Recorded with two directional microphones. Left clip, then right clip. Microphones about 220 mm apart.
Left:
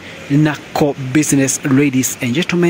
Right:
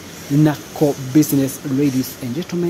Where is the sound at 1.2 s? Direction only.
5° left (ahead or behind).